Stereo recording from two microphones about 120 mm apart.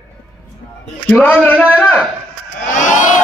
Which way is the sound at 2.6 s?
90° left.